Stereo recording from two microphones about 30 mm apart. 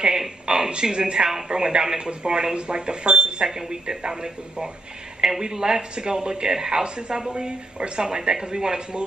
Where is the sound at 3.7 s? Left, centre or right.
Right.